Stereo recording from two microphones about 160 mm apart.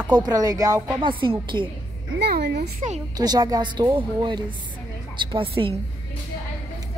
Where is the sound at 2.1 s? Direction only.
85° right.